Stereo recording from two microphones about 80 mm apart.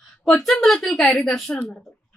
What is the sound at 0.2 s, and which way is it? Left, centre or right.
A woman's voice, centre.